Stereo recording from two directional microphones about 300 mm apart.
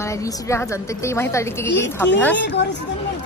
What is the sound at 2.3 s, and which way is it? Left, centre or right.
Speech, left.